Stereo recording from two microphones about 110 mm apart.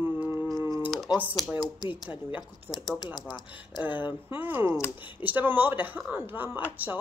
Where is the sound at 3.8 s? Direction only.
15° right (ahead or behind).